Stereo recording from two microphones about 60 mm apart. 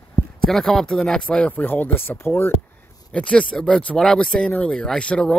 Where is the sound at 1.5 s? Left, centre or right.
Left.